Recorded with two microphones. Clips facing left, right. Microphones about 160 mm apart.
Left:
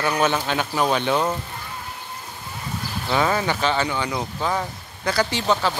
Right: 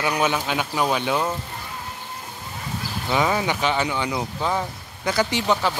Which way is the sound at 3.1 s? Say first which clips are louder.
Even; 10° right (ahead or behind).